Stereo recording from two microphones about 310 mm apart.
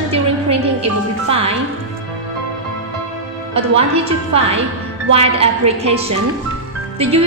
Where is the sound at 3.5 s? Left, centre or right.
Centre.